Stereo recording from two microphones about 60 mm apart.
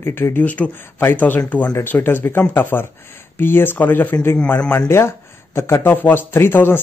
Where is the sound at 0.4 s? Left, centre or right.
Left.